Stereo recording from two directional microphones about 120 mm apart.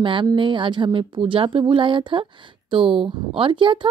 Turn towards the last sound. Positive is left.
turn(degrees=-45)  # may be behind; listen again after turning